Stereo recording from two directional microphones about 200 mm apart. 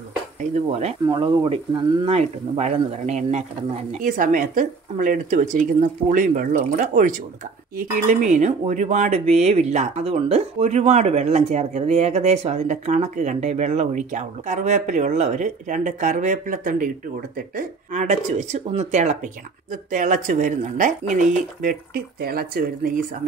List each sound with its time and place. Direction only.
0.4 s speech: 35° right (ahead or behind)
1.0 s speech: 20° right (ahead or behind)
2.0 s speech: 30° right (ahead or behind); by 22.9 s 45° right (ahead or behind)